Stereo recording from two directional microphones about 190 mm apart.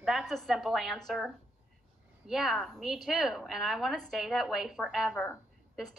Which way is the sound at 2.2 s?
Centre (ahead or behind).